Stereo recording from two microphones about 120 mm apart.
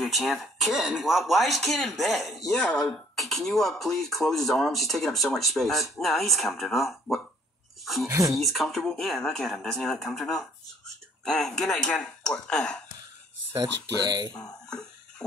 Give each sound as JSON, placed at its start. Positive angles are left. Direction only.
{"t": 0.0, "sound": "speech", "side_deg": 0}
{"t": 8.1, "sound": "speech", "side_deg": -25}
{"t": 8.4, "sound": "speech", "side_deg": 0}
{"t": 14.0, "sound": "speech", "side_deg": -35}
{"t": 14.7, "sound": "a sound", "side_deg": 5}